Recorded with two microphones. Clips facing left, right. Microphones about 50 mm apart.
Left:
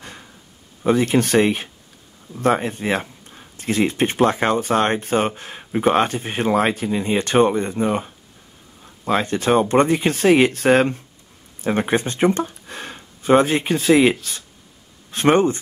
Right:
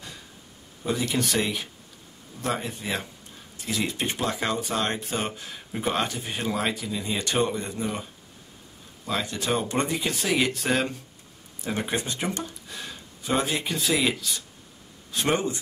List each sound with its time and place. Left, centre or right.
0.8 s speech: left